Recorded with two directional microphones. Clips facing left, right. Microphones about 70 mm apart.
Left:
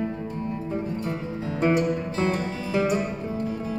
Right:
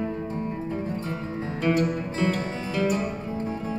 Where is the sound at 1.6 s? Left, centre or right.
Left.